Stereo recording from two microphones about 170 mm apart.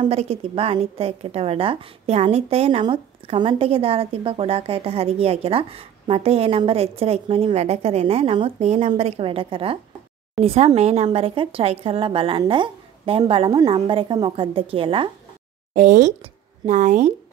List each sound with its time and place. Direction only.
0.0 s a woman's voice: 40° right (ahead or behind)
15.7 s speech: 45° right (ahead or behind)